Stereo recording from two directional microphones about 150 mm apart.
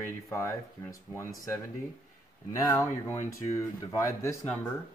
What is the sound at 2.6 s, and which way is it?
Speech, 20° left (ahead or behind).